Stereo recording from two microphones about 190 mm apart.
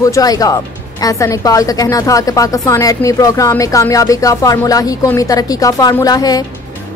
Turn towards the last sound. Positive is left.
turn(degrees=20)  # may be behind; listen again after turning